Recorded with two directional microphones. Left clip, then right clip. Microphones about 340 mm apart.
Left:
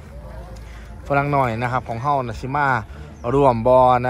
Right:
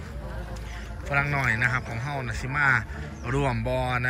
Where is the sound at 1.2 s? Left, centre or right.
Left.